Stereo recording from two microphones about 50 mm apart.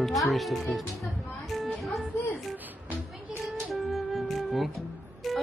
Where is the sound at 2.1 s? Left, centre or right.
Left.